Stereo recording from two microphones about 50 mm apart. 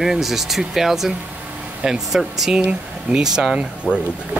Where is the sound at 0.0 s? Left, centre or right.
Centre.